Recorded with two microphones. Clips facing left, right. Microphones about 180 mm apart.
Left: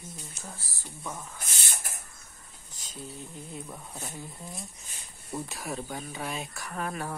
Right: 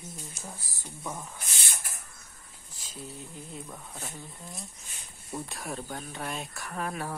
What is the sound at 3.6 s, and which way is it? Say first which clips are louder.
Speech: left 1 dB; 5° left (ahead or behind).